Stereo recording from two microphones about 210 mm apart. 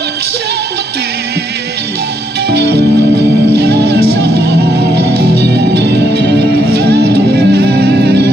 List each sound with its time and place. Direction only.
3.6 s music: 50° right (ahead or behind)